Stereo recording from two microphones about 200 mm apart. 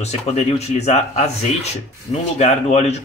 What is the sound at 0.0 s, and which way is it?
Speech, 30° left (ahead or behind).